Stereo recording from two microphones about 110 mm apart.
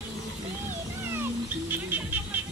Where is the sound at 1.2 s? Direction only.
20° right (ahead or behind).